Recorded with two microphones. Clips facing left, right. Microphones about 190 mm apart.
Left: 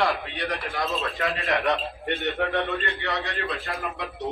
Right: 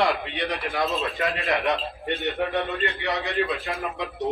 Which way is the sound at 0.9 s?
15° right (ahead or behind).